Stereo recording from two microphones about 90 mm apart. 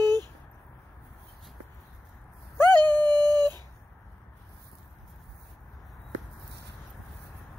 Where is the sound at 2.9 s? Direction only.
55° right (ahead or behind).